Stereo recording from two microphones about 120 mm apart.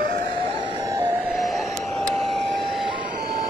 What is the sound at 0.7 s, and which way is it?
Vehicle, 35° right (ahead or behind).